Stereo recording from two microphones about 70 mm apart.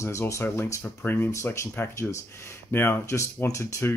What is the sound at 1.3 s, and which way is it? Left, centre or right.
Speech, left.